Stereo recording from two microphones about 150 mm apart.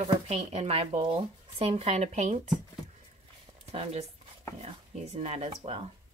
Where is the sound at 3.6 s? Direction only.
40° right (ahead or behind).